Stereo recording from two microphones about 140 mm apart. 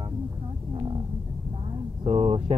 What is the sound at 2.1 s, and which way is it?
Speech, 50° right (ahead or behind).